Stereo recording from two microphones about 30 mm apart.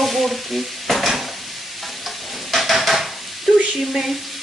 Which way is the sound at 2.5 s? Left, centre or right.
Centre.